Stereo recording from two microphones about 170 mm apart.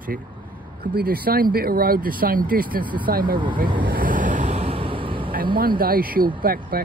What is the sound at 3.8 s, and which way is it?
Vehicle, 55° right (ahead or behind).